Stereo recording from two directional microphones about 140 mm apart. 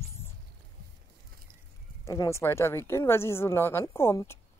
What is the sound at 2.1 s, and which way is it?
A woman's voice, 20° left (ahead or behind).